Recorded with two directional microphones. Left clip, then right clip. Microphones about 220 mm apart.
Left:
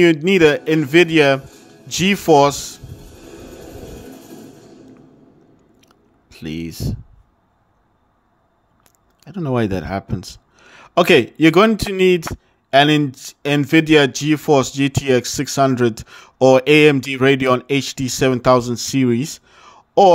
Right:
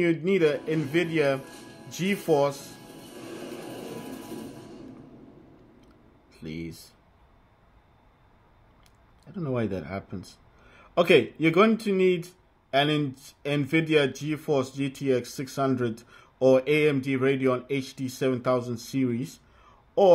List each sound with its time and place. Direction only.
0.0 s speech: 40° left (ahead or behind)
5.8 s chewing: 35° left (ahead or behind)
9.2 s speech: 35° left (ahead or behind)